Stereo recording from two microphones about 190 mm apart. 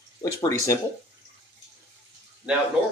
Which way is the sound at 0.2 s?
15° left (ahead or behind).